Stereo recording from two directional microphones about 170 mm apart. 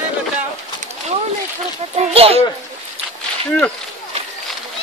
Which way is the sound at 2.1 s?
35° right (ahead or behind).